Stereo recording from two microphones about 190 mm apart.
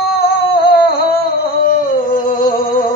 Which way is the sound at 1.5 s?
50° left (ahead or behind).